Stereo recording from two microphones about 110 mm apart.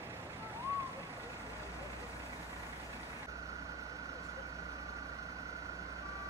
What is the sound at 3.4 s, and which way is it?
Vehicle, 30° right (ahead or behind).